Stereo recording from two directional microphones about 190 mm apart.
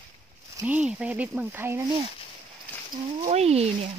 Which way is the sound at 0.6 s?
5° right (ahead or behind).